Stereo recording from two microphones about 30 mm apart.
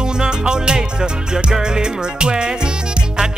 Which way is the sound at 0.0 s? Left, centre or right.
Right.